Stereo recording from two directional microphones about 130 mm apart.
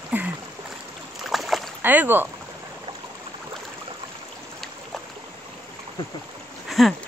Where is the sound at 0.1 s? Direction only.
15° right (ahead or behind).